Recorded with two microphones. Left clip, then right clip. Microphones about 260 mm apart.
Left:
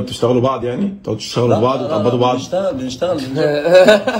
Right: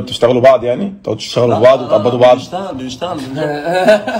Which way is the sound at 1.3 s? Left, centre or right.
Right.